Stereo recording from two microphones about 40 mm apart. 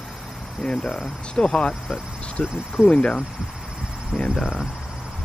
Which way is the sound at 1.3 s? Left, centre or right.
Centre.